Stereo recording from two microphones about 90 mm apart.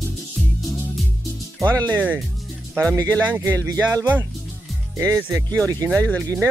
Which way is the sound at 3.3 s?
30° right (ahead or behind).